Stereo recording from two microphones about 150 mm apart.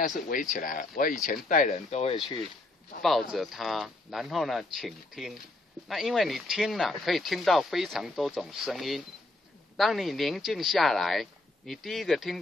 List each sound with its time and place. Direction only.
0.0 s speech: 60° left (ahead or behind)
3.0 s speech: centre (ahead or behind)